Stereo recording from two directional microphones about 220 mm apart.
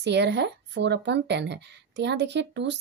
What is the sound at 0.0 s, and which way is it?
Speech, 50° right (ahead or behind).